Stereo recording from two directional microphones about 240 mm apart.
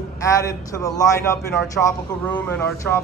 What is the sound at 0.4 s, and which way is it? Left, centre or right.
Speech, centre.